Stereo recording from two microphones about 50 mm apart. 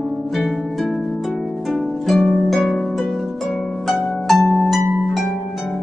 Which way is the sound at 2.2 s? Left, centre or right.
Left.